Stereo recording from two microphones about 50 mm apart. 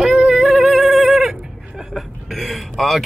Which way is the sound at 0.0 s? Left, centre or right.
Right.